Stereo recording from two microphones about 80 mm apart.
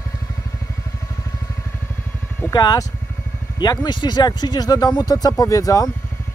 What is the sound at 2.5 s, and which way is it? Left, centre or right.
Speech, left.